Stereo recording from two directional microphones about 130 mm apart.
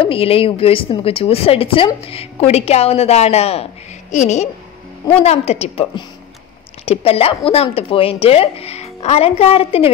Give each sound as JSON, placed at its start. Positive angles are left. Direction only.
{"t": 0.0, "sound": "speech", "side_deg": 45}
{"t": 4.1, "sound": "a woman's voice", "side_deg": 60}
{"t": 6.9, "sound": "speech", "side_deg": 50}